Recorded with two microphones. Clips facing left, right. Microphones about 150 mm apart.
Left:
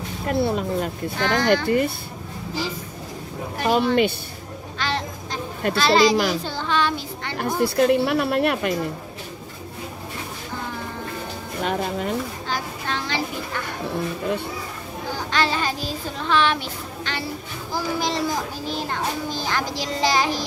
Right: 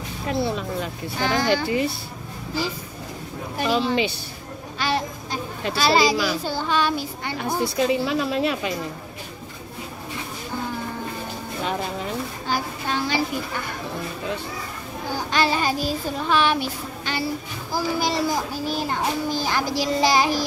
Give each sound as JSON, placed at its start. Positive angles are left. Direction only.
{"t": 0.3, "sound": "speech", "side_deg": 55}
{"t": 3.6, "sound": "speech", "side_deg": 55}
{"t": 4.7, "sound": "a sound", "side_deg": -10}
{"t": 5.8, "sound": "a child's voice", "side_deg": -10}
{"t": 7.3, "sound": "speech", "side_deg": 60}
{"t": 11.6, "sound": "speech", "side_deg": 50}
{"t": 12.4, "sound": "speech", "side_deg": -10}
{"t": 15.1, "sound": "a child's voice", "side_deg": -10}